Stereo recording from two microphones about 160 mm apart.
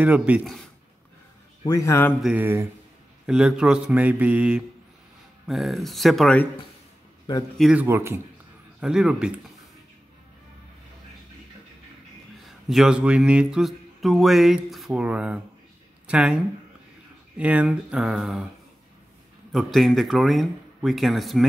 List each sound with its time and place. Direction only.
0.0 s speech: 10° right (ahead or behind)
1.7 s a man's voice: 20° left (ahead or behind)
2.2 s speech: 10° right (ahead or behind)
3.3 s speech: 5° right (ahead or behind)
7.5 s speech: centre (ahead or behind)
7.8 s speech: 15° right (ahead or behind)
8.8 s speech: 5° right (ahead or behind)
12.6 s speech: 5° right (ahead or behind)
17.4 s speech: 10° right (ahead or behind)
19.5 s speech: centre (ahead or behind)